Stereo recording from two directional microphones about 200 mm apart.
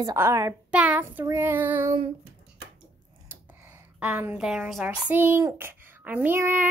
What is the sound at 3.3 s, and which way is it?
A woman's voice, 10° right (ahead or behind).